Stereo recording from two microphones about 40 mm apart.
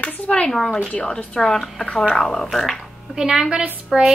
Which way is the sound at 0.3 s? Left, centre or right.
Centre.